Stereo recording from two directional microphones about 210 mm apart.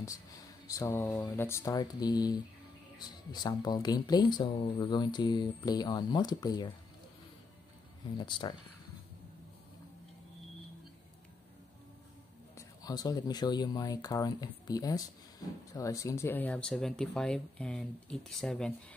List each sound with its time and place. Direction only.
0.0 s speech: 15° left (ahead or behind)
8.2 s speech: 20° left (ahead or behind)
12.5 s speech: 20° left (ahead or behind)